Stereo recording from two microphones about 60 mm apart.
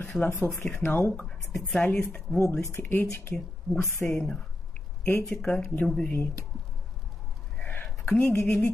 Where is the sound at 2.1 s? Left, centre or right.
Left.